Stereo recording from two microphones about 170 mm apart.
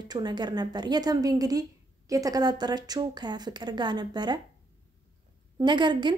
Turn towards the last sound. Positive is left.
turn(degrees=-25)  # may be behind; listen again after turning